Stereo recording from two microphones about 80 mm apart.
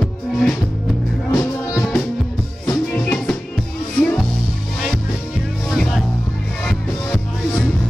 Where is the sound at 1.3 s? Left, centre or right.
Left.